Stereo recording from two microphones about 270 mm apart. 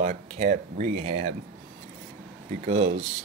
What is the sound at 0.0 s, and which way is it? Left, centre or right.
Speech, right.